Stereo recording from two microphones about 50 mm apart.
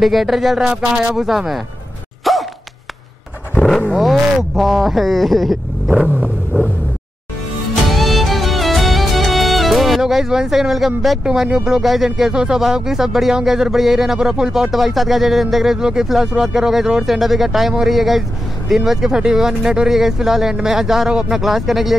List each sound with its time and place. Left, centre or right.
0.0 s speech: centre
0.7 s speech: centre
2.3 s bark: centre
3.9 s speech: centre
5.9 s vehicle: right
7.9 s music: centre
11.4 s speech: centre
11.8 s speech: centre
21.4 s speech: centre